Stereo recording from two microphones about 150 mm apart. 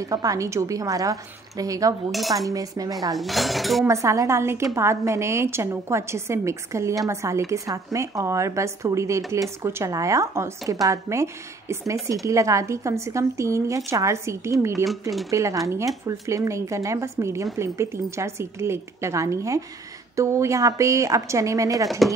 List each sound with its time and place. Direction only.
0.0 s speech: 25° right (ahead or behind)
2.0 s speech: centre (ahead or behind)
2.3 s speech: 20° right (ahead or behind)
3.2 s speech: centre (ahead or behind)
3.8 s speech: 20° right (ahead or behind)
14.9 s speech: centre (ahead or behind)
15.3 s speech: 20° right (ahead or behind)